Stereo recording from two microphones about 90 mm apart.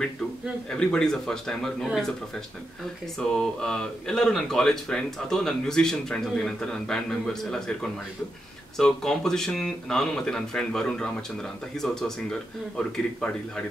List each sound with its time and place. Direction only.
0.7 s speech: 10° left (ahead or behind)
3.2 s speech: 5° left (ahead or behind)
8.7 s speech: 5° left (ahead or behind)